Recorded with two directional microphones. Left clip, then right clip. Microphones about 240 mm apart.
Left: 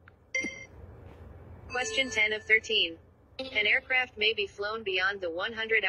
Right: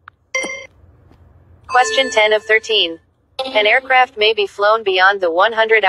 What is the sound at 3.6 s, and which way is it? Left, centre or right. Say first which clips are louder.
Speech: right 14 dB; centre.